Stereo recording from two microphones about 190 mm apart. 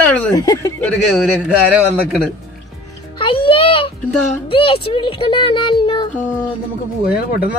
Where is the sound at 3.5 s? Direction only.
25° left (ahead or behind).